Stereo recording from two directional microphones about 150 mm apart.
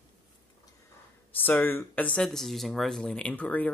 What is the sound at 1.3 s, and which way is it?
Speech, 15° left (ahead or behind).